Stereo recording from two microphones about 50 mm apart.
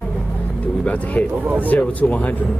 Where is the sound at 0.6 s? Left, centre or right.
Left.